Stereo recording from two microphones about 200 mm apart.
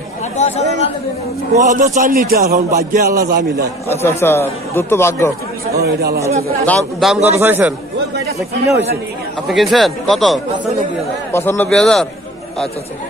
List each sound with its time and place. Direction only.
0.4 s speech: 35° left (ahead or behind)
1.5 s a man's voice: 40° right (ahead or behind)
3.9 s speech: 10° left (ahead or behind)
5.8 s a man's voice: 50° right (ahead or behind)
6.6 s speech: 5° left (ahead or behind)
7.3 s speech: 10° right (ahead or behind)
9.5 s speech: centre (ahead or behind)
11.3 s speech: 10° left (ahead or behind)